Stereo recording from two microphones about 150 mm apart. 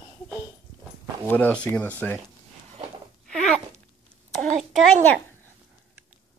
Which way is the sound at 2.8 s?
40° right (ahead or behind).